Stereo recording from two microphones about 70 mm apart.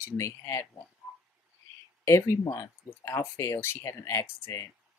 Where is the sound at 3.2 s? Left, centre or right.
Left.